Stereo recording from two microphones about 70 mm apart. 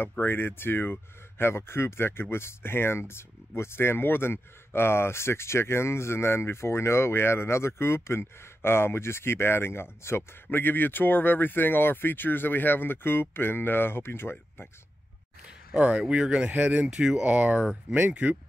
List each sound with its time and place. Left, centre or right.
0.2 s speech: left
15.4 s speech: centre
16.9 s speech: centre